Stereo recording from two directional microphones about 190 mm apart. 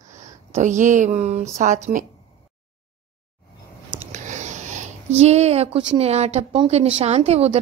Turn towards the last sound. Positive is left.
turn(degrees=-35)  # may be behind; listen again after turning